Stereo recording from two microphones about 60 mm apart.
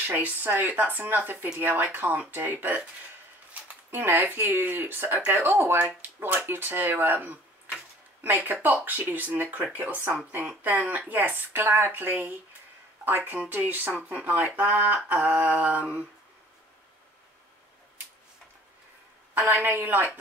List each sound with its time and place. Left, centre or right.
0.0 s speech: right
3.9 s speech: right
8.8 s speech: right
15.1 s speech: right
15.5 s speech: centre
19.3 s a woman's voice: right
19.6 s speech: right